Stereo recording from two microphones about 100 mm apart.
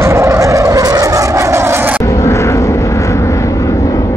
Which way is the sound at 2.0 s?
30° left (ahead or behind).